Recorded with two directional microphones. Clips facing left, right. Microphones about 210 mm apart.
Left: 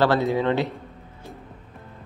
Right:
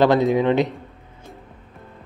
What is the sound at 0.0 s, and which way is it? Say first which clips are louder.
Speech: right 4 dB; 15° right (ahead or behind).